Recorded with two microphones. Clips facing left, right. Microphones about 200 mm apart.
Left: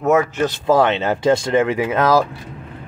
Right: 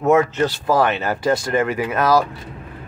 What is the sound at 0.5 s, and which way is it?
Speech, 25° left (ahead or behind).